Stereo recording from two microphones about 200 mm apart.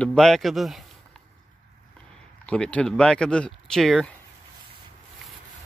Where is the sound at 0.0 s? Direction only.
5° left (ahead or behind).